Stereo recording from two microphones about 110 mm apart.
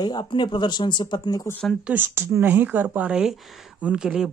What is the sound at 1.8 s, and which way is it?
Speech, 20° right (ahead or behind).